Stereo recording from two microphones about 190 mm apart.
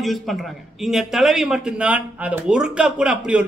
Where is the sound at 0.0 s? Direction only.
Centre (ahead or behind).